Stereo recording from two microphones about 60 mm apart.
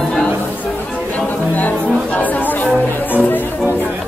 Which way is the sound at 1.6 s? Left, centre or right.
Left.